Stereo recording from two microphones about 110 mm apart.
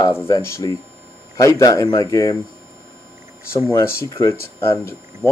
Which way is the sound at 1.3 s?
30° left (ahead or behind).